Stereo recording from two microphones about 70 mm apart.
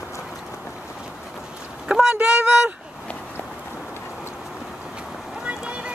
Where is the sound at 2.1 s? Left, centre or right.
Right.